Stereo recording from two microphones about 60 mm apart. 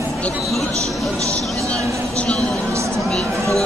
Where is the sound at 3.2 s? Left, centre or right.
Right.